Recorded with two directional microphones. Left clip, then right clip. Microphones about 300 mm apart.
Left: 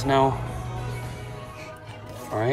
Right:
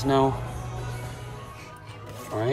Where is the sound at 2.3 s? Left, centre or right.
Centre.